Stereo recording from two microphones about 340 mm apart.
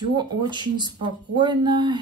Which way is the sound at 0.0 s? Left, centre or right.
Centre.